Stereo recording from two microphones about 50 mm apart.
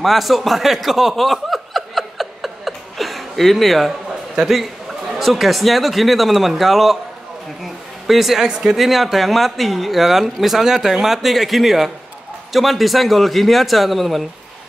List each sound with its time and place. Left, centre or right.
0.0 s chuckle: centre
4.4 s speech: centre
7.6 s a sound: centre
8.5 s speech: centre
8.7 s speech: centre